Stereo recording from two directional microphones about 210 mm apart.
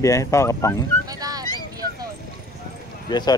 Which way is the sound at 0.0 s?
15° left (ahead or behind).